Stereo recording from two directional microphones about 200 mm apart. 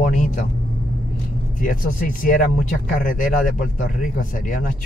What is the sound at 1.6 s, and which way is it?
Speech, 40° left (ahead or behind).